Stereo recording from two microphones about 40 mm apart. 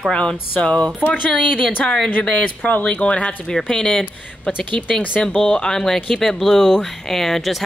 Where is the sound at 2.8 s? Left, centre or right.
Left.